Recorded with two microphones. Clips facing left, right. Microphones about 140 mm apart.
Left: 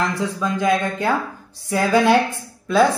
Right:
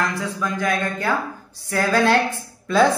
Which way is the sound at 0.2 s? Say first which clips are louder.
Left 3 dB; 20° left (ahead or behind).